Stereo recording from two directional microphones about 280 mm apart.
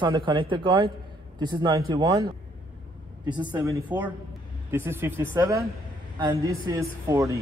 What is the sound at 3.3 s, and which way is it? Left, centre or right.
A man's voice, centre.